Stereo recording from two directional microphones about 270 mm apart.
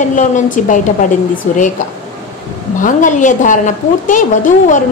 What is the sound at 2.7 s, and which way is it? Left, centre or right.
A woman's voice, left.